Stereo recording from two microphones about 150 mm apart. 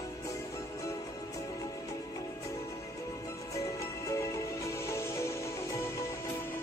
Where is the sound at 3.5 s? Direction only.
20° left (ahead or behind).